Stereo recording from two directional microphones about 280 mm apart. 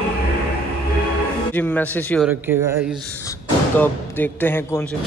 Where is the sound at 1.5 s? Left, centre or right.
Centre.